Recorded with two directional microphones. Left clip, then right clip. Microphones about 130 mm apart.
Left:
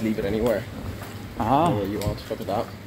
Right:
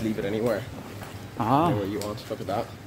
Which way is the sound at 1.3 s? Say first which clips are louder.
Left 2 dB; 30° right (ahead or behind).